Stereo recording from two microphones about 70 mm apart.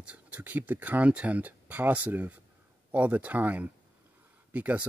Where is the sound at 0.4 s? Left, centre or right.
Right.